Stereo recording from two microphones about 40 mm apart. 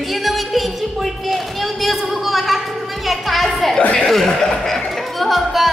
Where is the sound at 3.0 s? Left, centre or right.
Centre.